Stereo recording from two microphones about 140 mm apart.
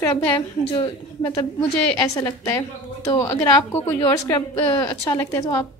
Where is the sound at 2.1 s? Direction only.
20° left (ahead or behind).